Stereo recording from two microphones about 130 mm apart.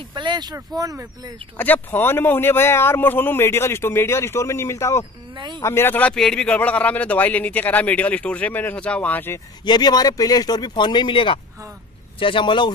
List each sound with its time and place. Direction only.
0.1 s speech: 35° right (ahead or behind)
1.6 s speech: 15° left (ahead or behind)
9.7 s speech: 30° left (ahead or behind)